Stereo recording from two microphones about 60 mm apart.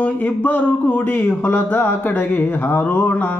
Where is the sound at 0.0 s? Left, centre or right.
Left.